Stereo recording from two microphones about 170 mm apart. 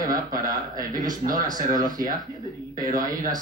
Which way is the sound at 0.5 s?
50° right (ahead or behind).